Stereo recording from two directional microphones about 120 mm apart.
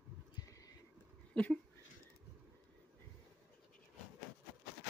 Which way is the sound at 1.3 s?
10° left (ahead or behind).